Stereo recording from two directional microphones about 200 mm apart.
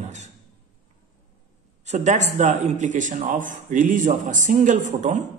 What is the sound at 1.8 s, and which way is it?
A woman's voice, 35° right (ahead or behind).